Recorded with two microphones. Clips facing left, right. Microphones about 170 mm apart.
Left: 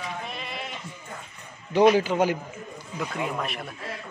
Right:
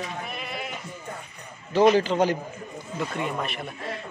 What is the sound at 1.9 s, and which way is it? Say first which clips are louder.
Speech: right 1 dB; 10° left (ahead or behind).